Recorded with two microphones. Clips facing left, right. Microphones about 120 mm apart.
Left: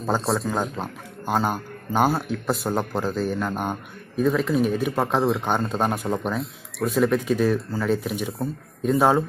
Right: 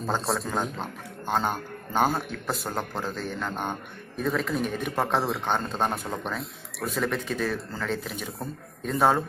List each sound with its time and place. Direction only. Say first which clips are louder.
0.0 s a man's voice: left 4 dB; centre (ahead or behind)